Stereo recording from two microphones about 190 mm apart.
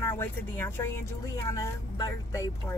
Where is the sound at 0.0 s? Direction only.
10° left (ahead or behind).